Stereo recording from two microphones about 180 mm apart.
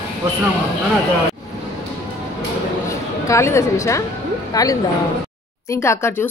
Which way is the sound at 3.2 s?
15° left (ahead or behind).